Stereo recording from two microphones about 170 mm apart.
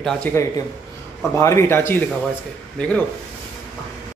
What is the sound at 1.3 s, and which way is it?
A man's voice, 15° left (ahead or behind).